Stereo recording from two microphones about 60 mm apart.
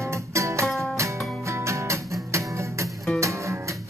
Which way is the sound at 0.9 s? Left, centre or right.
Right.